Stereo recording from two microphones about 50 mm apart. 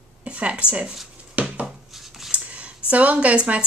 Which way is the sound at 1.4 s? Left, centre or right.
Right.